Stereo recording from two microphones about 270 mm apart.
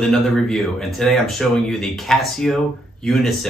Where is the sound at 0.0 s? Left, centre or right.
Centre.